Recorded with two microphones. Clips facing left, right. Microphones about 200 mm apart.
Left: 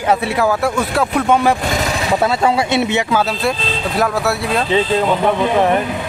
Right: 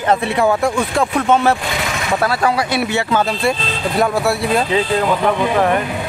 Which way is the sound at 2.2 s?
25° left (ahead or behind).